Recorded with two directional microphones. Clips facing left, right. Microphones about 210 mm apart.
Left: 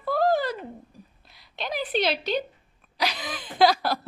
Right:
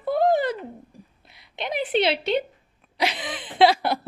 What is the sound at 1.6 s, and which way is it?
Speech, 25° right (ahead or behind).